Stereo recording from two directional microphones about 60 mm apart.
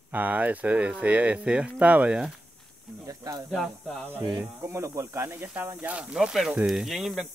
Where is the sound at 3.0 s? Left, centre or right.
Right.